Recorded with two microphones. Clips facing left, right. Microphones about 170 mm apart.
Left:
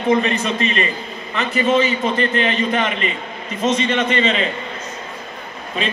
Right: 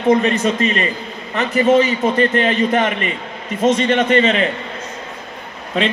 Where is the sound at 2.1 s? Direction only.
45° right (ahead or behind).